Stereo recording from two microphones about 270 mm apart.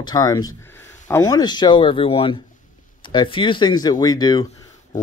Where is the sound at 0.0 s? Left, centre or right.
Centre.